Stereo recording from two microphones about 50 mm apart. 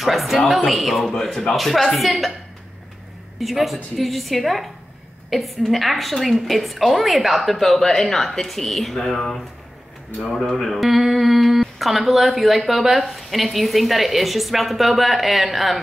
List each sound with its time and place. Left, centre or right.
0.0 s speech: centre
3.3 s speech: centre
10.2 s speech: centre